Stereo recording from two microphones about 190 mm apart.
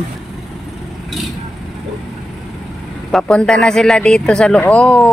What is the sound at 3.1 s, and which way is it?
Speech, 5° left (ahead or behind).